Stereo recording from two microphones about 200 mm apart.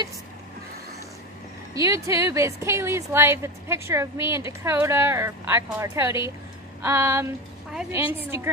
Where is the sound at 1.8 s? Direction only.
15° right (ahead or behind).